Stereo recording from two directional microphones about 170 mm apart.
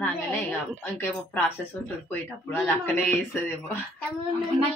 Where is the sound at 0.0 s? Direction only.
10° left (ahead or behind).